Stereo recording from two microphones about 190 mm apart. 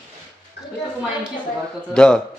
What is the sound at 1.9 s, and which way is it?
Speech, 5° left (ahead or behind).